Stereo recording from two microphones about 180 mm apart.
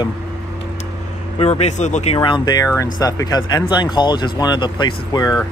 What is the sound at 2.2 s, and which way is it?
Speech, 25° left (ahead or behind).